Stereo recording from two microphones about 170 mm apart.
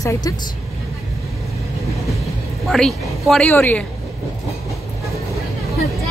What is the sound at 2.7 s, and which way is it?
A woman's voice, centre (ahead or behind).